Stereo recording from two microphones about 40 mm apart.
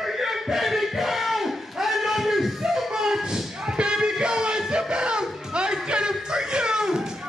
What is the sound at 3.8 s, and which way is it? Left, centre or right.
Music, centre.